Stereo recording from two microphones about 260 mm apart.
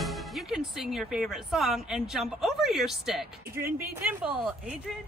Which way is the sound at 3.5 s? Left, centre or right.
Right.